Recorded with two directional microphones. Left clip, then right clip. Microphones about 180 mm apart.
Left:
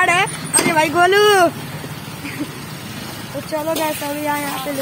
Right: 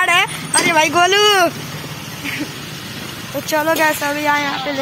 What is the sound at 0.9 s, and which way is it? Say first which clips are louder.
Speech: left 2 dB; 20° left (ahead or behind).